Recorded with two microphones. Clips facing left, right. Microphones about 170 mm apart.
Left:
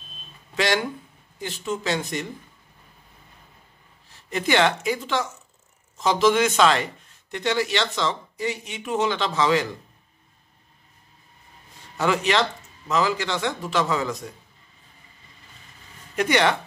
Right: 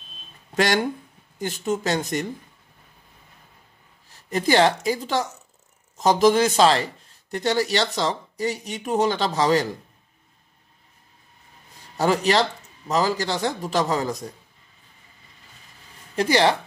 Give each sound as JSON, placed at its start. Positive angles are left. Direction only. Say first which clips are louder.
{"t": 0.6, "sound": "speech", "louder": "right 2 dB", "side_deg": -45}
{"t": 4.3, "sound": "speech", "louder": "right 2 dB", "side_deg": -40}
{"t": 12.0, "sound": "speech", "louder": "right 2 dB", "side_deg": -40}
{"t": 16.2, "sound": "speech", "louder": "right 2 dB", "side_deg": -30}